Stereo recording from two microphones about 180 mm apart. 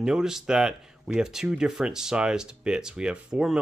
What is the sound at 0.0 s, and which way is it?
Speech, 5° right (ahead or behind).